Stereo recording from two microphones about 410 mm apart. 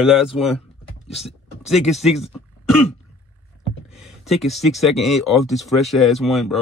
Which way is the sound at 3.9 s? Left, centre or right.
Centre.